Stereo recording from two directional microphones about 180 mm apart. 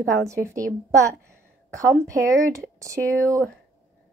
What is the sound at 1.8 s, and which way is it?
Speech, 20° right (ahead or behind).